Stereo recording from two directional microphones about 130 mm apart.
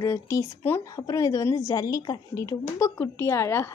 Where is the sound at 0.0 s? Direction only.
25° left (ahead or behind).